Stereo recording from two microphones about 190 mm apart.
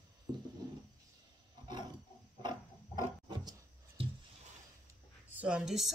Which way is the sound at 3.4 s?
20° right (ahead or behind).